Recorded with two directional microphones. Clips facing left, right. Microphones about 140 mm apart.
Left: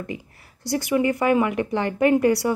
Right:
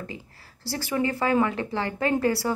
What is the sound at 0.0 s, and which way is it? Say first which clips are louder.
Speech: left 5 dB; 20° left (ahead or behind).